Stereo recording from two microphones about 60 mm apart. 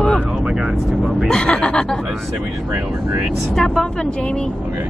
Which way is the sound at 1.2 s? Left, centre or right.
Centre.